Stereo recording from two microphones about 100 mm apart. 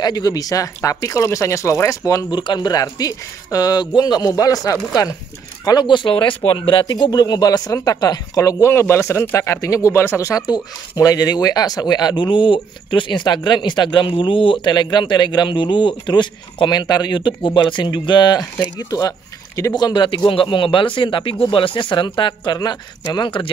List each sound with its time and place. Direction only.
0.0 s speech: 40° left (ahead or behind)
2.3 s speech: 50° left (ahead or behind)
5.7 s speech: 50° left (ahead or behind)
6.9 s speech: 45° left (ahead or behind)
8.4 s speech: 30° left (ahead or behind)
19.8 s speech: 50° left (ahead or behind)